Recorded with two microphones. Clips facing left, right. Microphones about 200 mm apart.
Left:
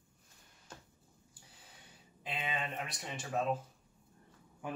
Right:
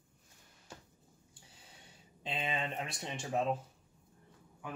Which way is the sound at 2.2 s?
25° right (ahead or behind).